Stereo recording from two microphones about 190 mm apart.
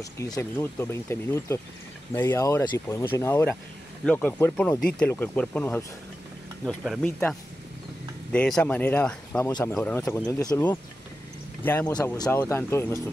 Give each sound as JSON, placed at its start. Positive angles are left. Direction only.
{"t": 0.0, "sound": "speech", "side_deg": 15}
{"t": 8.3, "sound": "speech", "side_deg": 5}
{"t": 9.5, "sound": "speech", "side_deg": 20}
{"t": 9.8, "sound": "speech", "side_deg": 5}
{"t": 10.0, "sound": "speech", "side_deg": 20}
{"t": 11.6, "sound": "speech", "side_deg": 10}